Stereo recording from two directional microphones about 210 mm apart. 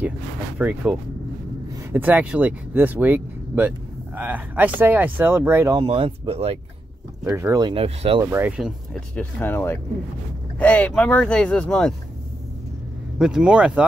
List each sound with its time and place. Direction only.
0.6 s speech: 5° right (ahead or behind); by 6.6 s 30° right (ahead or behind)
7.2 s speech: 15° right (ahead or behind)
8.3 s speech: 10° right (ahead or behind)
13.2 s speech: 5° right (ahead or behind)